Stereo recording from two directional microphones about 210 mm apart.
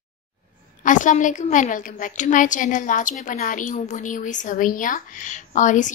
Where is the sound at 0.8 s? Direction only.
40° left (ahead or behind).